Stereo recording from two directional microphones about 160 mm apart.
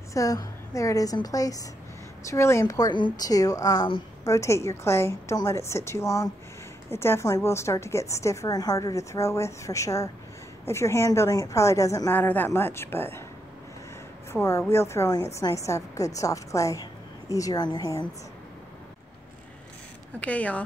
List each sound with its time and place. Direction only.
0.1 s a woman's voice: 20° left (ahead or behind)
14.3 s a woman's voice: 15° left (ahead or behind)
20.2 s a woman's voice: 10° left (ahead or behind)